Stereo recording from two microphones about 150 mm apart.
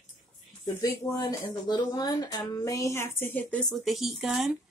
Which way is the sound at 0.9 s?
20° left (ahead or behind).